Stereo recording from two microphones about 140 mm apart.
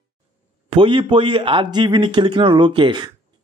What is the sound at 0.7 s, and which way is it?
A man's voice, 35° right (ahead or behind).